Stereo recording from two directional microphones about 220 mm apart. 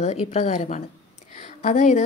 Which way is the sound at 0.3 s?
30° left (ahead or behind).